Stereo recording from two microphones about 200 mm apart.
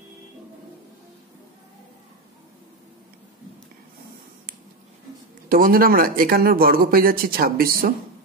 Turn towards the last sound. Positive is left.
turn(degrees=-50)  # may be behind; listen again after turning